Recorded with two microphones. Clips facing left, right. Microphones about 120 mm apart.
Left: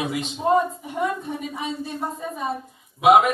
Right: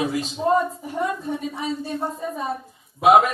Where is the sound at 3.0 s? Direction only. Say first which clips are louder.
Even; centre (ahead or behind).